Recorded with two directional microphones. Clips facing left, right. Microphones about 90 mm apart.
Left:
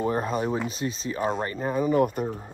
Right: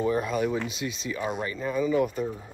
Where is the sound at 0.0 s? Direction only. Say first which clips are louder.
Even; 40° left (ahead or behind).